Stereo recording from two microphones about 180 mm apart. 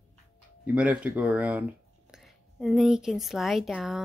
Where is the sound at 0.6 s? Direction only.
10° right (ahead or behind).